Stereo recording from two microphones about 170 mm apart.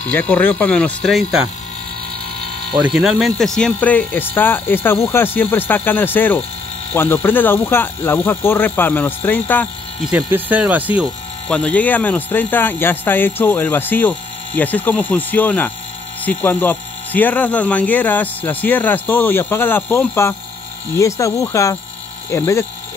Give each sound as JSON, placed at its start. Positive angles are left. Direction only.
{"t": 0.1, "sound": "speech", "side_deg": 10}
{"t": 2.7, "sound": "speech", "side_deg": 0}
{"t": 10.0, "sound": "speech", "side_deg": -5}
{"t": 11.4, "sound": "speech", "side_deg": 5}